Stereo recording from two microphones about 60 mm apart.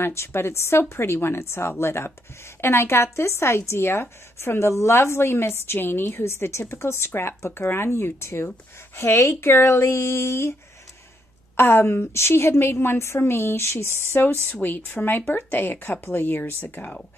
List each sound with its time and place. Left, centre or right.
0.0 s a woman's voice: left
11.5 s a woman's voice: left
14.5 s speech: left